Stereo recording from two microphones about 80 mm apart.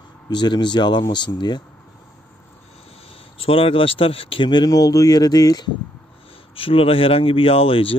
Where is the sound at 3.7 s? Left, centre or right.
Left.